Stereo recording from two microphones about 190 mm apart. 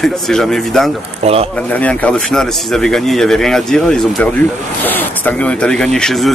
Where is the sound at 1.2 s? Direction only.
30° right (ahead or behind).